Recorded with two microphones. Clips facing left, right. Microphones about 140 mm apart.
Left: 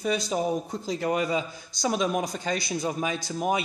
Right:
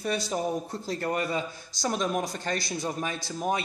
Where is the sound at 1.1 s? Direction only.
15° left (ahead or behind).